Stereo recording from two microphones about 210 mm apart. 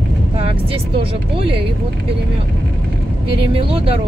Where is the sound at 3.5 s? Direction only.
25° right (ahead or behind).